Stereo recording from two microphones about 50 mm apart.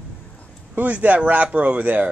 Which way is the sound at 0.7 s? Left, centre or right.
Right.